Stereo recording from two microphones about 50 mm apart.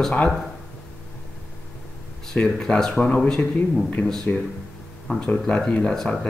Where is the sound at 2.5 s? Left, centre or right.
Centre.